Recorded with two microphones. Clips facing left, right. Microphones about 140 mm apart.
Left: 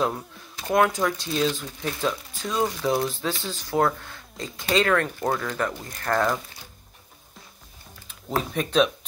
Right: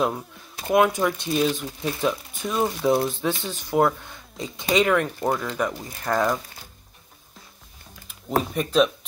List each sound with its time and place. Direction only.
0.7 s speech: 15° right (ahead or behind)
8.1 s speech: centre (ahead or behind)